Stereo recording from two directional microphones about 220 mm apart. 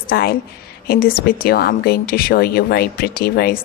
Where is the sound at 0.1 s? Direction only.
45° left (ahead or behind).